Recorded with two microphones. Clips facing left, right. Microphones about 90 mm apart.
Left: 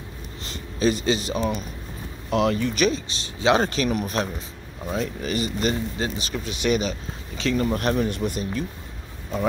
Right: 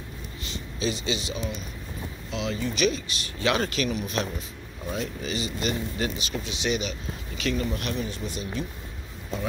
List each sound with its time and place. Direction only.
0.5 s speech: 45° left (ahead or behind)
2.8 s speech: 30° left (ahead or behind); by 5.8 s 45° left (ahead or behind)
5.9 s speech: 35° left (ahead or behind)
6.4 s speech: 50° left (ahead or behind)